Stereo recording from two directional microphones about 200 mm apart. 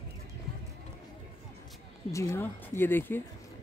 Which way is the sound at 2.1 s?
15° left (ahead or behind).